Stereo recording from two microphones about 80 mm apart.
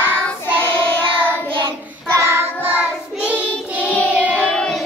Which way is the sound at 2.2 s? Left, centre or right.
Right.